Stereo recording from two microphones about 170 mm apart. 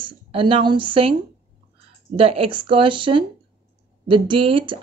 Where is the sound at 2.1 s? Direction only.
35° right (ahead or behind).